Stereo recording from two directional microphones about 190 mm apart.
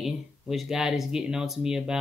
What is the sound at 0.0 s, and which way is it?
Speech, centre (ahead or behind).